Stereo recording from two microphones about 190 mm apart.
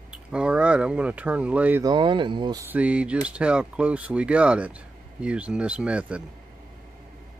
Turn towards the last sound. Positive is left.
turn(degrees=-5)  # may be behind; listen again after turning